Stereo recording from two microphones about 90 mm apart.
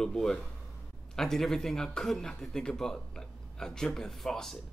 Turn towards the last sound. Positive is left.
turn(degrees=5)  # may be behind; listen again after turning